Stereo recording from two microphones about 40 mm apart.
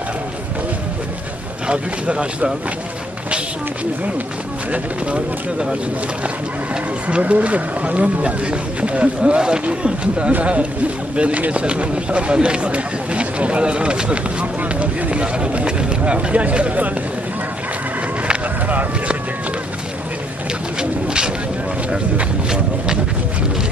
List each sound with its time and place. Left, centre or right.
1.7 s speech: right
6.2 s speech: right
14.4 s speech: right
20.8 s bird: right